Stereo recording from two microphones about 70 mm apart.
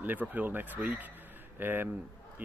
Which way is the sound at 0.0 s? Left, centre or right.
Right.